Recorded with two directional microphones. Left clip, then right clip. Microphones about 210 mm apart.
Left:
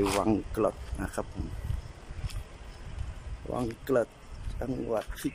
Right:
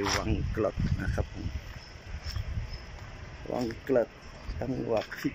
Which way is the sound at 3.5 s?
5° left (ahead or behind).